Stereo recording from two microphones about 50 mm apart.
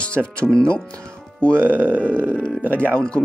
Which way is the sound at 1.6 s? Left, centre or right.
Right.